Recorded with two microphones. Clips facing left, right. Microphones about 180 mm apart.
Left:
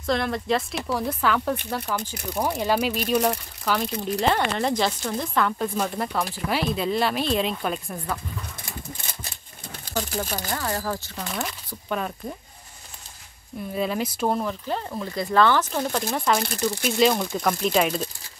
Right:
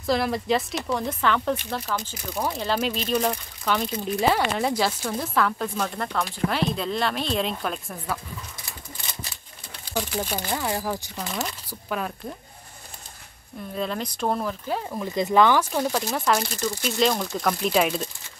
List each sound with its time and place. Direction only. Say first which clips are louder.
0.0 s speech: right 1 dB; 5° right (ahead or behind)
10.3 s speech: right 2 dB; 10° right (ahead or behind)
11.2 s speech: even; centre (ahead or behind)
13.7 s speech: left 3 dB; 5° left (ahead or behind)
15.0 s speech: right 1 dB; 20° right (ahead or behind); by 18.1 s centre (ahead or behind)